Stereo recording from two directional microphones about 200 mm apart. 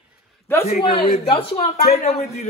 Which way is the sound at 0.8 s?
25° left (ahead or behind).